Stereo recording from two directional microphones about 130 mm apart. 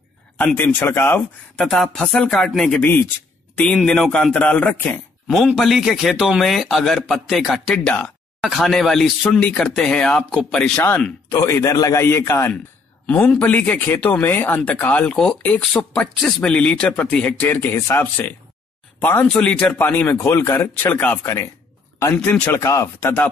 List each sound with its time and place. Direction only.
0.4 s speech: 15° left (ahead or behind)
1.7 s a man's voice: 5° left (ahead or behind)
5.3 s a man's voice: centre (ahead or behind)
11.3 s a man's voice: 25° left (ahead or behind)